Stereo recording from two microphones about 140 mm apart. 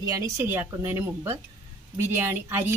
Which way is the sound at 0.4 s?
15° right (ahead or behind).